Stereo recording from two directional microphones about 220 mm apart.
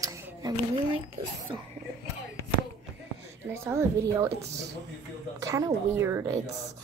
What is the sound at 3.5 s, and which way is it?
Speech, 10° right (ahead or behind).